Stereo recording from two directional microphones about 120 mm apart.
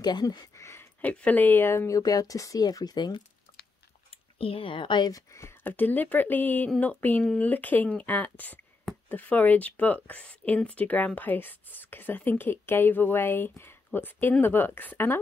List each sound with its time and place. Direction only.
0.0 s speech: 35° left (ahead or behind)
0.7 s a sound: 20° left (ahead or behind)
1.1 s speech: 15° left (ahead or behind); by 3.2 s 35° left (ahead or behind)
4.1 s speech: 50° left (ahead or behind); by 15.1 s 15° left (ahead or behind)